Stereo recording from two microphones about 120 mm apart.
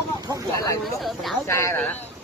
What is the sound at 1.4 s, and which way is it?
Speech, 25° left (ahead or behind).